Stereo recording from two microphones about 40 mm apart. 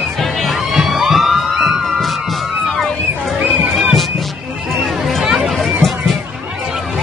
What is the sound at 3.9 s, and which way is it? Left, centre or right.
Music, centre.